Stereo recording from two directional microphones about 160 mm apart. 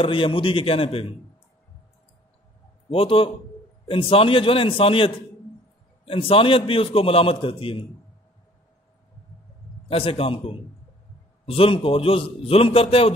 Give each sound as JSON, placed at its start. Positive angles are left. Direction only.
{"t": 0.0, "sound": "a man's voice", "side_deg": 35}
{"t": 2.9, "sound": "a man's voice", "side_deg": 35}
{"t": 9.8, "sound": "a man's voice", "side_deg": 35}